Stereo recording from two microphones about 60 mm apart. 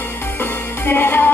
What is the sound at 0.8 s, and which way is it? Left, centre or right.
Music, left.